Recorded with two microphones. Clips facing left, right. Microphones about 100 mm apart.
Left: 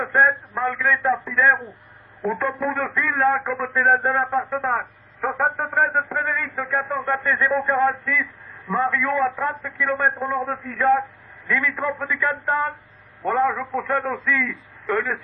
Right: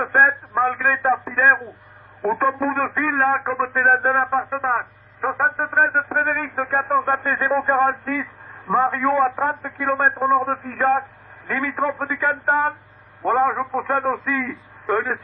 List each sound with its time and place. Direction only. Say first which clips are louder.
0.0 s a man's voice: right 1 dB; 40° right (ahead or behind)
13.2 s a man's voice: right 2 dB; 30° right (ahead or behind)